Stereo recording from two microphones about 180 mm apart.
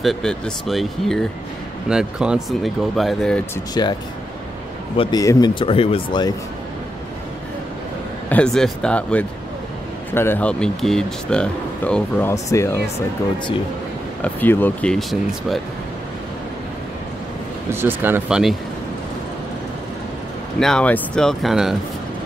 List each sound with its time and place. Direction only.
0.0 s speech: centre (ahead or behind)
3.8 s speech: 20° left (ahead or behind)
4.9 s speech: 30° left (ahead or behind)
8.3 s speech: 5° left (ahead or behind)
14.2 s speech: 10° left (ahead or behind)
17.6 s speech: 10° right (ahead or behind)
20.5 s speech: 5° left (ahead or behind)